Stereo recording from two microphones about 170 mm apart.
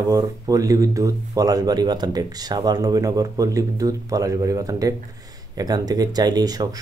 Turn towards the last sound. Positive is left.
turn(degrees=-20)  # may be behind; listen again after turning